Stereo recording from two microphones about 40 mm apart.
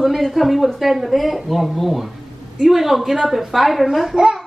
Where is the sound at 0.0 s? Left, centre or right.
Centre.